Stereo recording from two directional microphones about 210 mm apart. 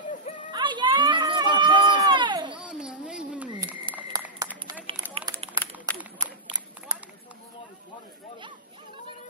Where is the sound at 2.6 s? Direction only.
5° right (ahead or behind).